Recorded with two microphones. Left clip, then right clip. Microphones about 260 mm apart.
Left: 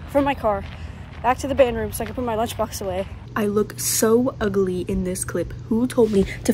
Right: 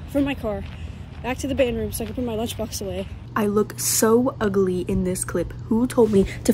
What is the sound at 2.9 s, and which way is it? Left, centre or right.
A woman's voice, centre.